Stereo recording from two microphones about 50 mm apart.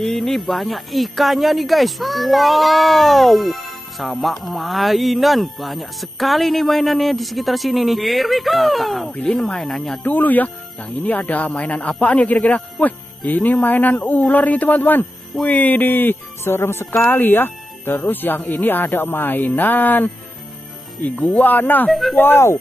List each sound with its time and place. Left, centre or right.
0.0 s speech: centre
9.1 s a man's voice: left
9.4 s speech: centre
10.0 s a man's voice: left
17.0 s speech: left
21.8 s speech: centre